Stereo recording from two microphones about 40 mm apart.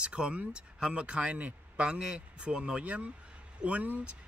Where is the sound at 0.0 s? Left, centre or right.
Right.